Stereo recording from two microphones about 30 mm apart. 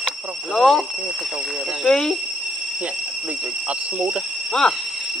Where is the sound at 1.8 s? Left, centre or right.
Left.